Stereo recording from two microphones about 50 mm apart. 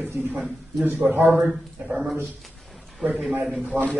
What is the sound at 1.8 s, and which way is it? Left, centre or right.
Speech, centre.